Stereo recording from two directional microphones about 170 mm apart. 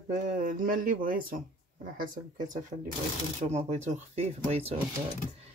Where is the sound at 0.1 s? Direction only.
50° right (ahead or behind).